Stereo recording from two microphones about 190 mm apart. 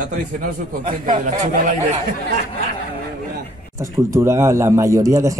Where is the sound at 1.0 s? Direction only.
45° right (ahead or behind).